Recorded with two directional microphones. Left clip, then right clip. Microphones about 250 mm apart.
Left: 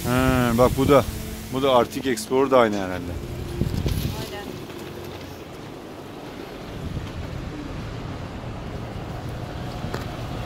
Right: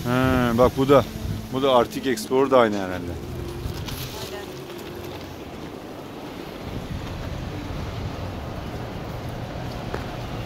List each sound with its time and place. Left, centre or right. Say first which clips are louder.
0.1 s insect: even; centre
1.5 s speech: even; centre